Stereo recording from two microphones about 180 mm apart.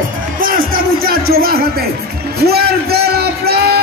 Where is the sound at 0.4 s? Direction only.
50° right (ahead or behind).